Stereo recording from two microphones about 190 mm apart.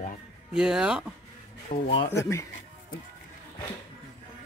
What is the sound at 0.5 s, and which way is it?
Speech, 5° right (ahead or behind).